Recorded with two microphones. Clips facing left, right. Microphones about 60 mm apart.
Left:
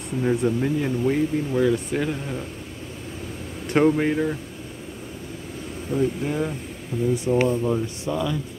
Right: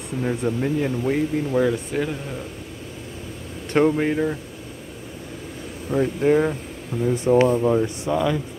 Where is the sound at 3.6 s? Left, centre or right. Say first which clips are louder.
Even; centre.